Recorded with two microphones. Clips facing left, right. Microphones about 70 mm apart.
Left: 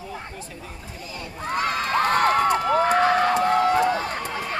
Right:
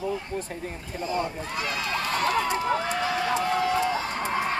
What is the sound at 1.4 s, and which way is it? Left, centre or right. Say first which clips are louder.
Crowd: left 6 dB; left.